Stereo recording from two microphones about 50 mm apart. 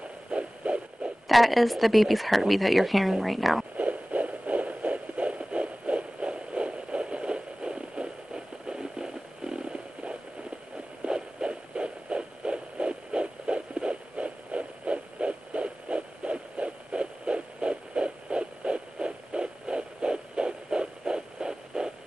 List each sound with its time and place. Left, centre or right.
0.3 s heart murmur: right
1.3 s speech: centre
3.7 s heart murmur: right
8.6 s a sound: centre
11.1 s heart murmur: centre